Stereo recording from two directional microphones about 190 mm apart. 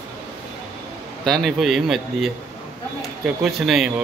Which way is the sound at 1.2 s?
Centre (ahead or behind).